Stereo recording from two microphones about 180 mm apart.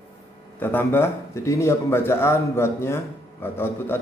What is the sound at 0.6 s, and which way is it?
Speech, 10° left (ahead or behind).